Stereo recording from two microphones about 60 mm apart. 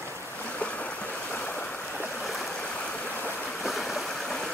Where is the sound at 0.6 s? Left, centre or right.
Left.